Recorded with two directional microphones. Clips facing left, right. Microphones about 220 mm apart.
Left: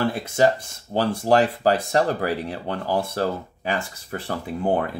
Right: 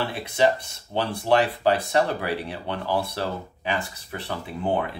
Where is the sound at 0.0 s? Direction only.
45° left (ahead or behind).